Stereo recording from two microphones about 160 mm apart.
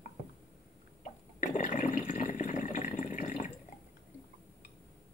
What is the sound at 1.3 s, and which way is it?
Water, 50° left (ahead or behind).